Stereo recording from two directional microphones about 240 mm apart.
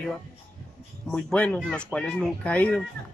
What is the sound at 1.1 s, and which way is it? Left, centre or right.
Speech, centre.